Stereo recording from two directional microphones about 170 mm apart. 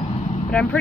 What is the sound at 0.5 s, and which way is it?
Speech, 10° left (ahead or behind).